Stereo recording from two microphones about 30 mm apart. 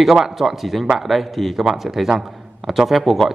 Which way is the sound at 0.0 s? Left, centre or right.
Centre.